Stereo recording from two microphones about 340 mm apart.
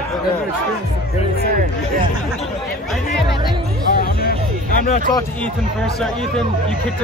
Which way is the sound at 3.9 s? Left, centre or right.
Left.